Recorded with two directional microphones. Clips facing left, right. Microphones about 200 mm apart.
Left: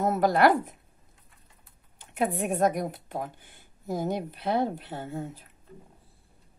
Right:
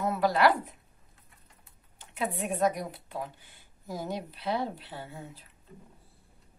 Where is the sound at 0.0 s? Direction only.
50° left (ahead or behind).